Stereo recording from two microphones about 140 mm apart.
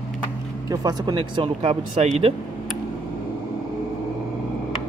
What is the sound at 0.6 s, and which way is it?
Speech, 30° right (ahead or behind).